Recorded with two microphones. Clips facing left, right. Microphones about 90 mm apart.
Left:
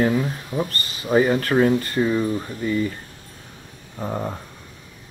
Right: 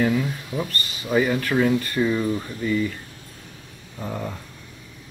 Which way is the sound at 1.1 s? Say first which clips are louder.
Left 3 dB; 35° left (ahead or behind).